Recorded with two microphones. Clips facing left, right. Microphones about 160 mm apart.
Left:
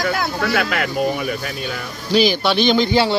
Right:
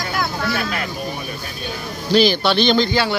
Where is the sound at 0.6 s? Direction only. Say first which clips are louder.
Left 5 dB; 90° left.